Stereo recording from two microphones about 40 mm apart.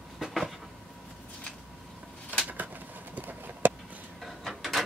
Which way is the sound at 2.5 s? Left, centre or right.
Right.